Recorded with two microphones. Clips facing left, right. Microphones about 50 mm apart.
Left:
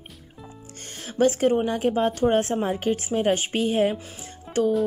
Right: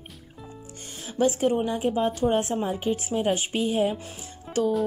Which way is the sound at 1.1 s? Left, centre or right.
Left.